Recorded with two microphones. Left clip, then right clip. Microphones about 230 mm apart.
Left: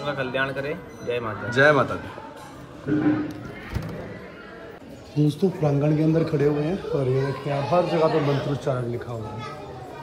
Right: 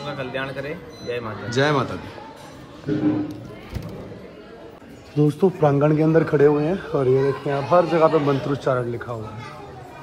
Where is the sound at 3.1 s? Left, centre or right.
Centre.